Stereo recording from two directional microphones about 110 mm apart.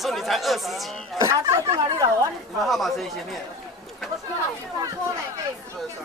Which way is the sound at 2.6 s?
Centre (ahead or behind).